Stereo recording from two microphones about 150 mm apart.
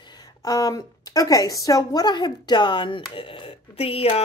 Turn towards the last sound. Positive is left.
turn(degrees=40)  # may be behind; listen again after turning